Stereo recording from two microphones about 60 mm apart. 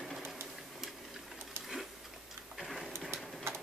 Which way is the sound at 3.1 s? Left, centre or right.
Right.